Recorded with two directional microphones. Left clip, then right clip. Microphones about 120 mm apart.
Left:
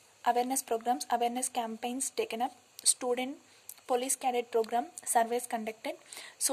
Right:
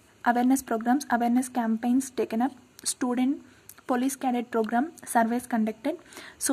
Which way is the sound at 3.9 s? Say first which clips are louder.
Right 2 dB; 25° left (ahead or behind).